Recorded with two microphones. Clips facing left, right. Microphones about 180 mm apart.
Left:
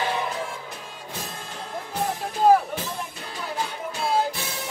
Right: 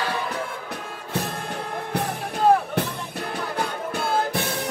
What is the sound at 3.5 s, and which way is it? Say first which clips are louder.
Music: right 1 dB; 60° right (ahead or behind).